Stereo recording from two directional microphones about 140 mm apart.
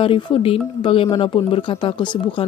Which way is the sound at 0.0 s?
40° left (ahead or behind).